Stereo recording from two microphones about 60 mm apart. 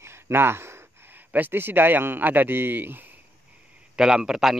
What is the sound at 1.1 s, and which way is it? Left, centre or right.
A man's voice, right.